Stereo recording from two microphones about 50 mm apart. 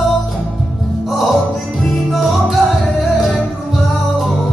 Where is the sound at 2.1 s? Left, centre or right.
Centre.